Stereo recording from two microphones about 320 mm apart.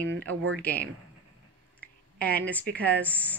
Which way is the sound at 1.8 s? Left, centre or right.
Centre.